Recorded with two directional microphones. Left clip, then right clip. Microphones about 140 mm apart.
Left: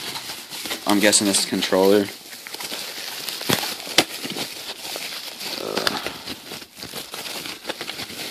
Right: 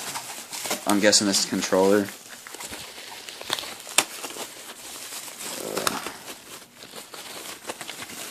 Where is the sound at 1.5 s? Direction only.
10° left (ahead or behind).